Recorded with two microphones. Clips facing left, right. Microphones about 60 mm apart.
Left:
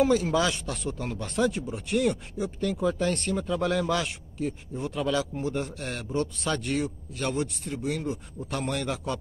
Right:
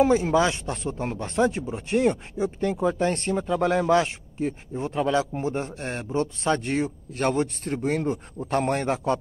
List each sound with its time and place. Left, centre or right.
0.0 s speech: right